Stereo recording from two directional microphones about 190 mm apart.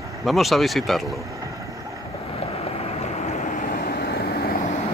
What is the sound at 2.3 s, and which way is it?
Vehicle, 35° left (ahead or behind).